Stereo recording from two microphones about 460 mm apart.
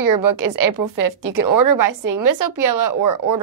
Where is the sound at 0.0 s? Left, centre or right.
Right.